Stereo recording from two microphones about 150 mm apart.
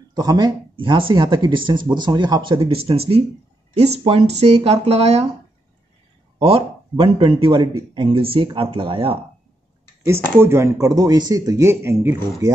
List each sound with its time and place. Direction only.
0.1 s speech: 25° right (ahead or behind); by 5.2 s 45° right (ahead or behind)
6.4 s speech: 35° right (ahead or behind)
10.0 s speech: 15° right (ahead or behind)